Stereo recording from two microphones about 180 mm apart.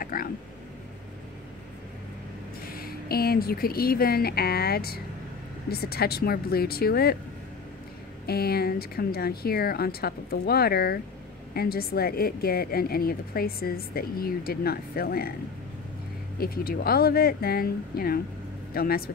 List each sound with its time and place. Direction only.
0.0 s speech: 55° left (ahead or behind)
2.6 s a woman's voice: 55° left (ahead or behind)
8.3 s a woman's voice: 60° left (ahead or behind)
16.3 s a woman's voice: 55° left (ahead or behind)